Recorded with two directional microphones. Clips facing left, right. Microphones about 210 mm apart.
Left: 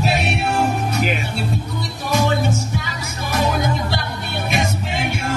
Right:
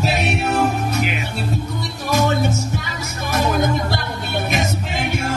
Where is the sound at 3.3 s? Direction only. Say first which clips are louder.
Right 1 dB; 50° right (ahead or behind).